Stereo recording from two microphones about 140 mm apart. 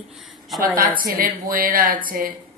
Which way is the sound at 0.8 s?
90° right.